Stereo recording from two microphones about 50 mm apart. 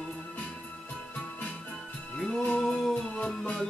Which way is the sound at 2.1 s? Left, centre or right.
Centre.